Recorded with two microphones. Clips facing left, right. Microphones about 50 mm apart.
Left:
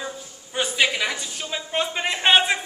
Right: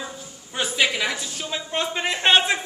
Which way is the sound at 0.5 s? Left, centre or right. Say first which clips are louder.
Left 1 dB; centre.